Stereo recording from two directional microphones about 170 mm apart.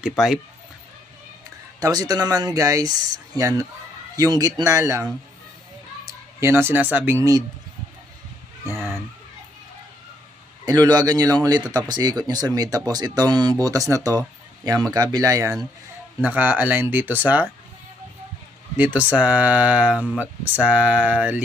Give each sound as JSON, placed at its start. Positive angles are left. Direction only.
{"t": 1.8, "sound": "speech", "side_deg": -20}
{"t": 8.6, "sound": "fowl", "side_deg": -15}
{"t": 10.6, "sound": "speech", "side_deg": -25}
{"t": 18.8, "sound": "speech", "side_deg": -10}